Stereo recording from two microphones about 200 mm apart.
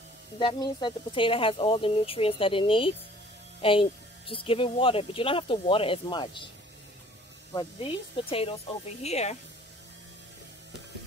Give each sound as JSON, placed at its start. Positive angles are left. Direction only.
{"t": 0.4, "sound": "speech", "side_deg": 25}
{"t": 7.5, "sound": "speech", "side_deg": 30}